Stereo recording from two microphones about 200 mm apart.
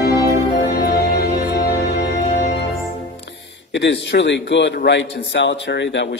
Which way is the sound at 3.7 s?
60° left (ahead or behind).